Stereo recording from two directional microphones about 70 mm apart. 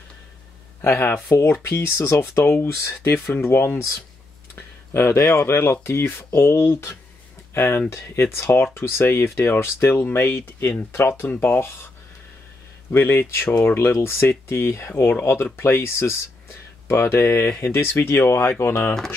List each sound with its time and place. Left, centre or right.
0.8 s speech: left
4.9 s speech: left
12.9 s speech: left